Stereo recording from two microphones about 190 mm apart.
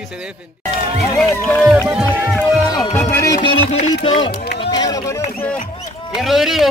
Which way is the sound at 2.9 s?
15° left (ahead or behind).